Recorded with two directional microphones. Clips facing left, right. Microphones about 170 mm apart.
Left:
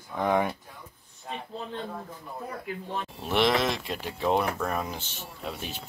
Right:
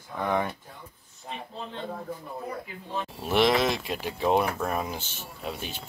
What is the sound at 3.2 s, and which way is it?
Speech, 5° right (ahead or behind).